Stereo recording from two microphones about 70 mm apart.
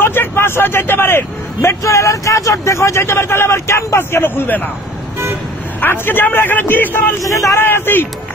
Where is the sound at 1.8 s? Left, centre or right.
Left.